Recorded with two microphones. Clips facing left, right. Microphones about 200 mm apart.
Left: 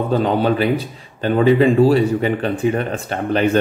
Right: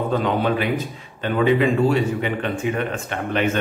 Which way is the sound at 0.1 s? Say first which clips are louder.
Left 5 dB; 35° left (ahead or behind).